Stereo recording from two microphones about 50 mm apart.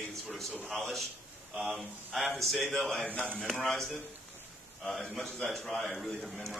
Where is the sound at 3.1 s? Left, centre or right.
Left.